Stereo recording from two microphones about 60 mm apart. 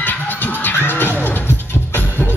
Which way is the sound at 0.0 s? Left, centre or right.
Left.